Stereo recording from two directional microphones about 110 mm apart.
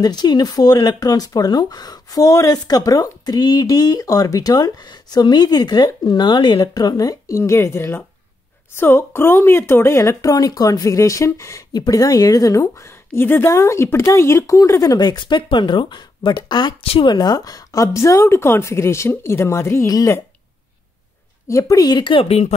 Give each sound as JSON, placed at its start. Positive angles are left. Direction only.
{"t": 0.0, "sound": "a woman's voice", "side_deg": 40}
{"t": 21.5, "sound": "speech", "side_deg": 30}